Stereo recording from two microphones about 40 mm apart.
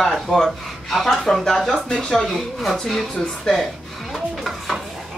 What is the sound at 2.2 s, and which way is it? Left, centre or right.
Speech, centre.